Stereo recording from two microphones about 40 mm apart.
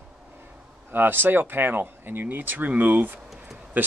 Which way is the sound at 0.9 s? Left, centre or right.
Right.